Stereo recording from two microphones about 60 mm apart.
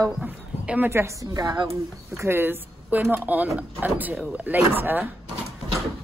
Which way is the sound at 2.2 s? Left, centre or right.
Right.